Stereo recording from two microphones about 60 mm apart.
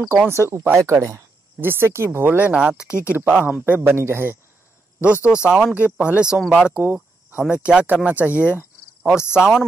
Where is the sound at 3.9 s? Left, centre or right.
Right.